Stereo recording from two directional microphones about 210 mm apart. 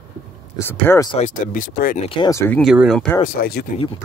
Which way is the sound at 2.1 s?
20° left (ahead or behind).